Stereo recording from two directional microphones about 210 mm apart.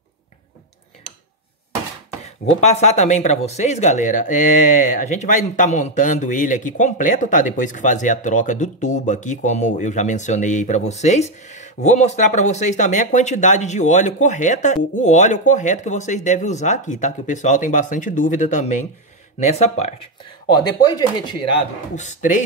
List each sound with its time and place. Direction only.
2.5 s speech: 35° left (ahead or behind)
20.9 s speech: 20° left (ahead or behind)
21.9 s speech: 35° left (ahead or behind)